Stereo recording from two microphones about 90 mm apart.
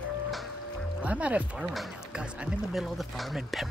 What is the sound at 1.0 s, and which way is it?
Speech, 15° right (ahead or behind).